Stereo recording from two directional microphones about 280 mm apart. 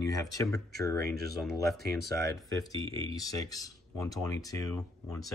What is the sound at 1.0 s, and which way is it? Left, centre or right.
Speech, right.